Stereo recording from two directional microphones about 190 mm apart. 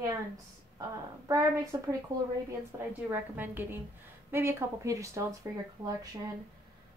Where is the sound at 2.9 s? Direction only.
10° right (ahead or behind).